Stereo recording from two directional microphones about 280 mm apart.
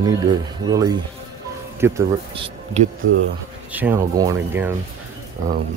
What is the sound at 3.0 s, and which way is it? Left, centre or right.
Speech, right.